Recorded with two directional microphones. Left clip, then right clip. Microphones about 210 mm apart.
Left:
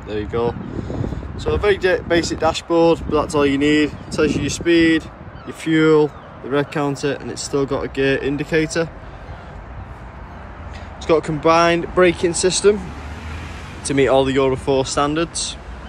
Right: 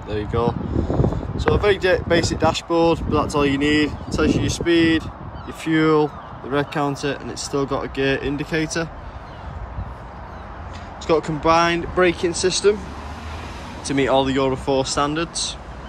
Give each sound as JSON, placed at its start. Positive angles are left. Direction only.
{"t": 0.1, "sound": "speech", "side_deg": -15}
{"t": 11.1, "sound": "speech", "side_deg": -15}
{"t": 13.8, "sound": "speech", "side_deg": -10}